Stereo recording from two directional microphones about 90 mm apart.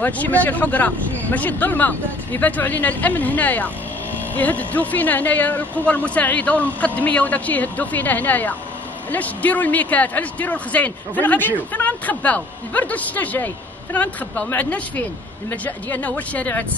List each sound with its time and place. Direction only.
0.0 s speech: 20° left (ahead or behind)